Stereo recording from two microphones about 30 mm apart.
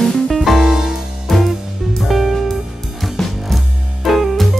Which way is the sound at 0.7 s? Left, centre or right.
Centre.